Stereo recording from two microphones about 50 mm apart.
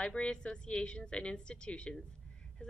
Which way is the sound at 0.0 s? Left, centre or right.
Centre.